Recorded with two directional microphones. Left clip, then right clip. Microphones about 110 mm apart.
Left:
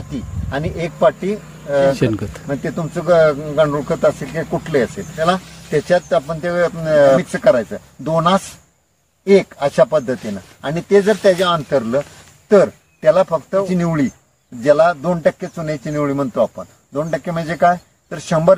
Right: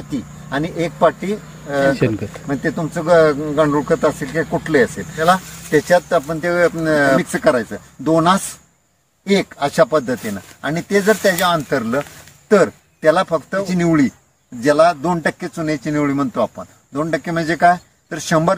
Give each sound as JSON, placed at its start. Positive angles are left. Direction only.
{"t": 0.5, "sound": "a man's voice", "side_deg": 20}